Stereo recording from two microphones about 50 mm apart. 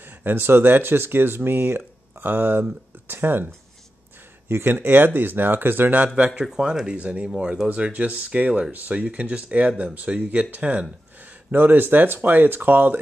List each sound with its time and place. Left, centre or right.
0.0 s speech: right
4.5 s speech: right
4.8 s speech: right
6.0 s speech: right
6.3 s speech: centre; by 13.0 s right